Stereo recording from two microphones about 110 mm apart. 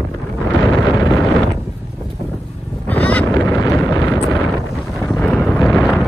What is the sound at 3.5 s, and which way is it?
Wind noise, 30° left (ahead or behind).